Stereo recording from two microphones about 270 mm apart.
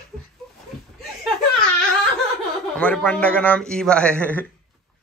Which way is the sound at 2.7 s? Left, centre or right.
Centre.